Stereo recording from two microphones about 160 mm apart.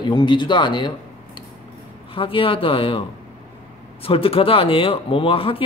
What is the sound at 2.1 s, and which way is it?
Speech, 35° left (ahead or behind).